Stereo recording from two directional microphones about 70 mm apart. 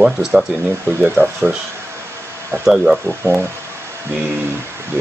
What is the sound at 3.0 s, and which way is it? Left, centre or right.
Speech, right.